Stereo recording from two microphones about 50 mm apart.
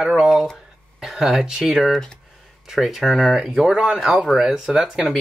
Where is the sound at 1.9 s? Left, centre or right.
Centre.